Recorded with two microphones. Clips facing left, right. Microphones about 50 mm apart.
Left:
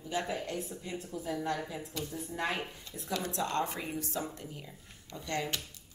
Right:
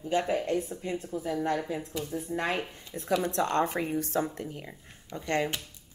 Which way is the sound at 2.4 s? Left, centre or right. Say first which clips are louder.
Right 3 dB; right.